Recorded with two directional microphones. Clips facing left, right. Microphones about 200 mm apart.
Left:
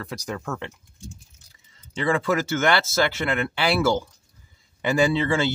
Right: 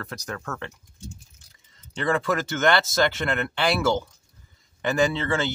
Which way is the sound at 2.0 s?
10° left (ahead or behind).